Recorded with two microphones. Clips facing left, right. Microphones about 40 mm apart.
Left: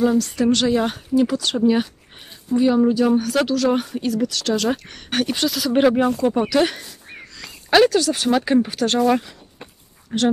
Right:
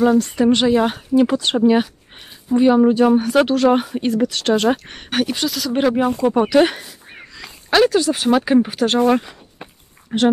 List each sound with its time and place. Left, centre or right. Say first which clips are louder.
0.0 s speech: right 3 dB; right
0.7 s speech: right 3 dB; centre
1.1 s speech: right 3 dB; right
5.1 s speech: right 1 dB; centre
6.1 s speech: right 4 dB; right